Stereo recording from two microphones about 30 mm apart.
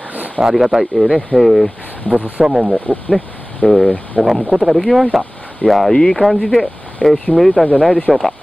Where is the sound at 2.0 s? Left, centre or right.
Left.